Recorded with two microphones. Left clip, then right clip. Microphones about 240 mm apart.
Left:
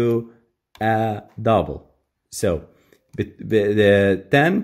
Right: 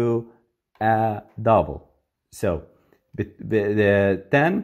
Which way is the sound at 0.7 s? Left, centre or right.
Centre.